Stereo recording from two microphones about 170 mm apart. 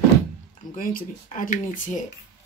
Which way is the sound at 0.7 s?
55° left (ahead or behind).